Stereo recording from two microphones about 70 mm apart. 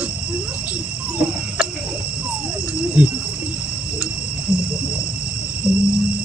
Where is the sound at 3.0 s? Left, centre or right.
Centre.